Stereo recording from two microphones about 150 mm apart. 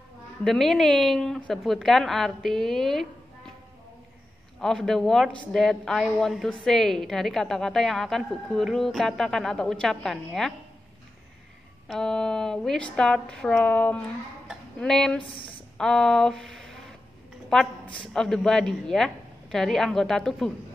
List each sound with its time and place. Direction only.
0.4 s a woman's voice: centre (ahead or behind)
4.6 s a woman's voice: 5° left (ahead or behind)
11.9 s a woman's voice: 5° left (ahead or behind)
15.2 s a woman's voice: 35° left (ahead or behind)
15.8 s a woman's voice: 5° left (ahead or behind)